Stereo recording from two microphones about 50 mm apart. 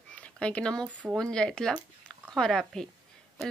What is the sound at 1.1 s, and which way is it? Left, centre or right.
Speech, centre.